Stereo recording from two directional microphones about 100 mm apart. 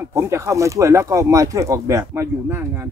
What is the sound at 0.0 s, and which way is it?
Speech, 30° right (ahead or behind).